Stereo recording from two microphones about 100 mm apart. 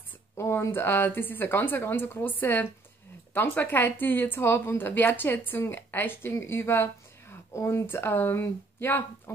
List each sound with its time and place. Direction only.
0.4 s speech: 25° left (ahead or behind)